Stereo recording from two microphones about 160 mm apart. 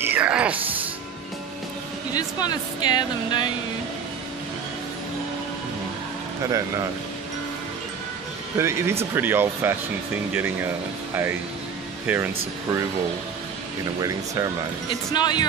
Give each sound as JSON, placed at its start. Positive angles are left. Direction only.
{"t": 0.0, "sound": "speech", "side_deg": -10}
{"t": 2.1, "sound": "speech", "side_deg": 25}
{"t": 6.4, "sound": "speech", "side_deg": -20}
{"t": 8.5, "sound": "speech", "side_deg": -15}
{"t": 12.1, "sound": "speech", "side_deg": -10}
{"t": 14.0, "sound": "speech", "side_deg": -20}
{"t": 15.1, "sound": "speech", "side_deg": 25}